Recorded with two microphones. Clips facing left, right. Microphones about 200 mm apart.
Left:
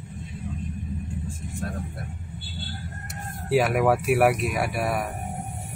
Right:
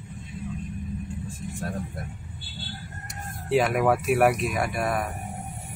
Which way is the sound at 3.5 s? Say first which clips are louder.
Left 1 dB; 5° left (ahead or behind).